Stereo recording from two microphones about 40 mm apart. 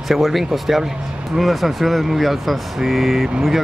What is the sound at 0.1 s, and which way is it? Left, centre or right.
Speech, centre.